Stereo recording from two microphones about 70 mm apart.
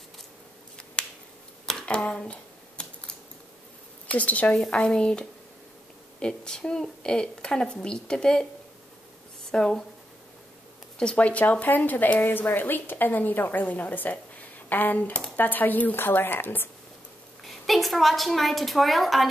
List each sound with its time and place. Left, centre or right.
1.0 s finger snapping: centre
1.7 s a sound: centre
4.1 s a woman's voice: left
9.5 s a woman's voice: centre
11.0 s speech: centre
17.6 s a woman's voice: centre